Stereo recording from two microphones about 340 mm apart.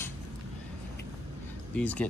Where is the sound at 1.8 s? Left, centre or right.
Centre.